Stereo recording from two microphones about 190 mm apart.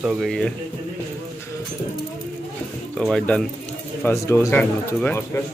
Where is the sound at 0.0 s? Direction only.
5° right (ahead or behind).